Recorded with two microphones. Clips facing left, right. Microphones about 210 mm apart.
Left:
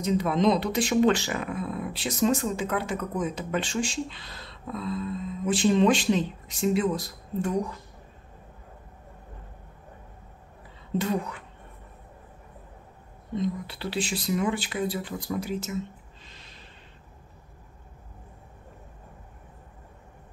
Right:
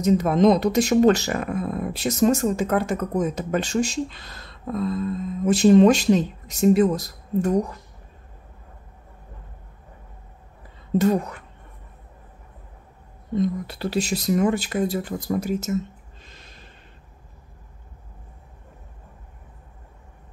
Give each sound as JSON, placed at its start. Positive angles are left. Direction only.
{"t": 0.0, "sound": "speech", "side_deg": -45}
{"t": 11.0, "sound": "speech", "side_deg": -45}
{"t": 13.4, "sound": "speech", "side_deg": -45}
{"t": 16.3, "sound": "a sound", "side_deg": -45}